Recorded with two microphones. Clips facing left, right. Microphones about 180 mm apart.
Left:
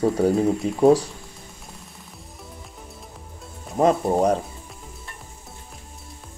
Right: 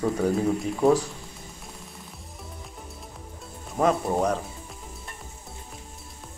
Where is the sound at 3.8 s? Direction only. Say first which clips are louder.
Left 4 dB; 30° left (ahead or behind).